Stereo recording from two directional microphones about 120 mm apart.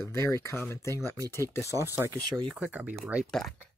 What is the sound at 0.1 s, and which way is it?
Speech, 25° left (ahead or behind).